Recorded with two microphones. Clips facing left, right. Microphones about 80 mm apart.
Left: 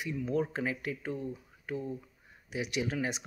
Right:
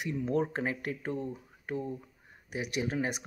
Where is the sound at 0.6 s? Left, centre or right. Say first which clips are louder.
Right 1 dB; right.